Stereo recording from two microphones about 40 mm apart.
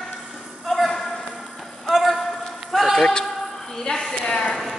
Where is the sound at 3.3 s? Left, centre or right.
Centre.